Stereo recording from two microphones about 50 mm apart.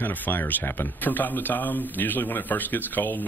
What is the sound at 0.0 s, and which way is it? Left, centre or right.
Speech, left.